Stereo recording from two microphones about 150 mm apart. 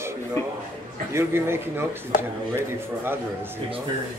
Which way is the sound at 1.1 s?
15° right (ahead or behind).